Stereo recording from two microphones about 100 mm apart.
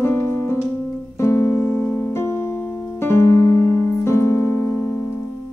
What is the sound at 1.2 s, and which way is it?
Keyboard, 25° left (ahead or behind).